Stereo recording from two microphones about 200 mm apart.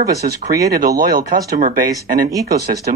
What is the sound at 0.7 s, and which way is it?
Speech, 45° right (ahead or behind).